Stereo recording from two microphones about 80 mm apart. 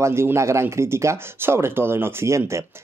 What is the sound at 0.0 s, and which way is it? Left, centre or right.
Speech, right.